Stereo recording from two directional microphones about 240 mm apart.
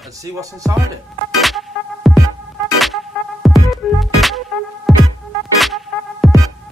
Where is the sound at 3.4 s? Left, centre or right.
Centre.